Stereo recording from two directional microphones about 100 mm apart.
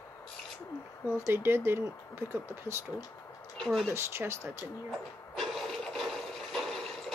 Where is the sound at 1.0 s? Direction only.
25° right (ahead or behind).